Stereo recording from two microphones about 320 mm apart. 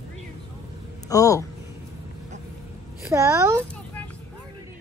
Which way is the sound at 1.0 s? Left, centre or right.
Centre.